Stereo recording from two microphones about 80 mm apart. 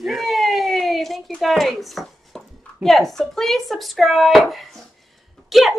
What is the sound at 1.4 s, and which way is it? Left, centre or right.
Speech, centre.